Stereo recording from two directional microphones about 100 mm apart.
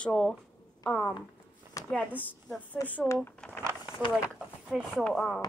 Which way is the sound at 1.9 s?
15° left (ahead or behind).